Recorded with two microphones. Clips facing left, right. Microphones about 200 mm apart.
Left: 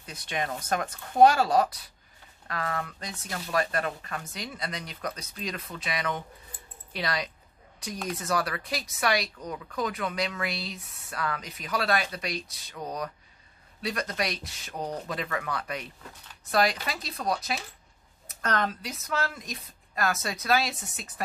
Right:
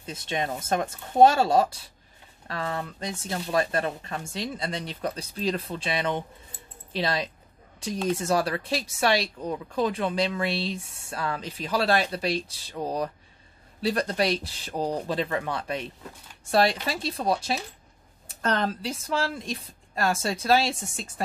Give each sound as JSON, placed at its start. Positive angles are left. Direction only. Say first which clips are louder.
{"t": 0.0, "sound": "speech", "louder": "right 3 dB", "side_deg": -25}